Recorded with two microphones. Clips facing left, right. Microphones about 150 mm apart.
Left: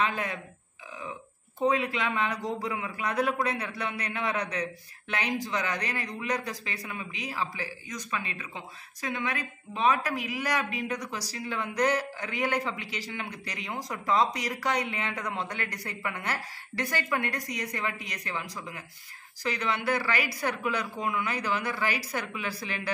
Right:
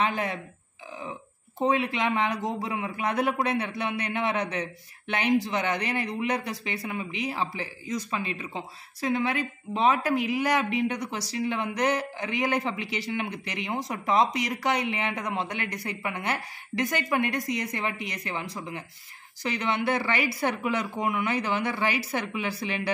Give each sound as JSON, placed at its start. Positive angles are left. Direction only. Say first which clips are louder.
{"t": 0.0, "sound": "speech", "louder": "right 2 dB", "side_deg": -30}
{"t": 1.6, "sound": "speech", "louder": "right 2 dB", "side_deg": -25}